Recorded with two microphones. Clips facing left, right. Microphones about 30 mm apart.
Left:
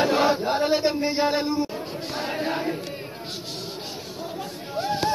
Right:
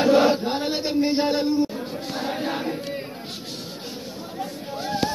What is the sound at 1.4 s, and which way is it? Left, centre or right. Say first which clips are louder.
Speech: right 3 dB; left.